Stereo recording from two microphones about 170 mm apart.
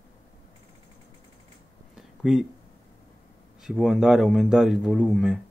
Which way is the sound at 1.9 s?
5° right (ahead or behind).